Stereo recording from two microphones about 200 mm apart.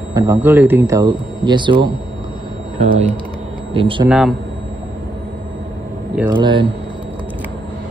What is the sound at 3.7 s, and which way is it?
Speech, 25° right (ahead or behind).